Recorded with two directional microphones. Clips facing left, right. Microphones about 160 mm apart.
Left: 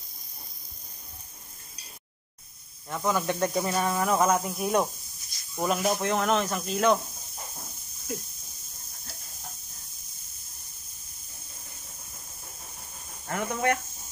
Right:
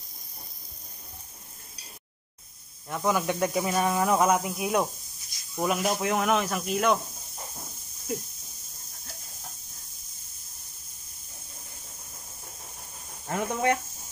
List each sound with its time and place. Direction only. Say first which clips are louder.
2.9 s speech: right 1 dB; 10° right (ahead or behind)
13.3 s speech: right 1 dB; 15° right (ahead or behind)